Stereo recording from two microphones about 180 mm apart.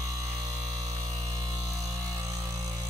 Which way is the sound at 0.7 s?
20° right (ahead or behind).